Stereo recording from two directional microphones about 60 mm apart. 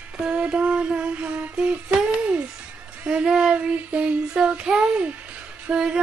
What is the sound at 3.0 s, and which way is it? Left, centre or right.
Child singing, centre.